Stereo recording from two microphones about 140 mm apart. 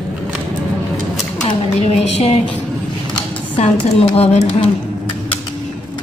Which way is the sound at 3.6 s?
45° left (ahead or behind).